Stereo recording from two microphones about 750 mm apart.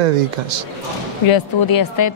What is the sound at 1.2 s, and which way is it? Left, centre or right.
Speech, left.